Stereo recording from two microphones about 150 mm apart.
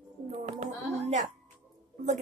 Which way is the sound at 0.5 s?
45° right (ahead or behind).